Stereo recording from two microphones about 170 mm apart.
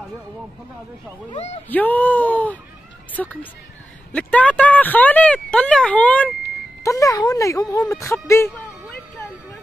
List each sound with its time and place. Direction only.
1.3 s speech: 40° left (ahead or behind)
1.7 s speech: 10° left (ahead or behind)
6.8 s speech: 20° left (ahead or behind)